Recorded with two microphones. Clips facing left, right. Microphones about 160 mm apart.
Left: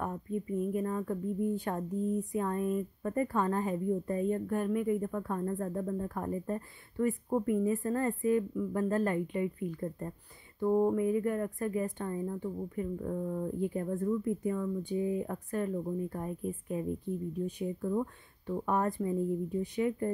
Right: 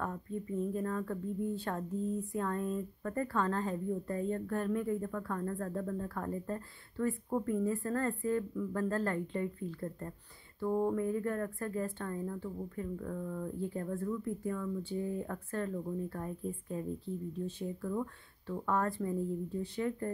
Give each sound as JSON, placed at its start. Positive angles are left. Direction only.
{"t": 0.0, "sound": "a woman's voice", "side_deg": 15}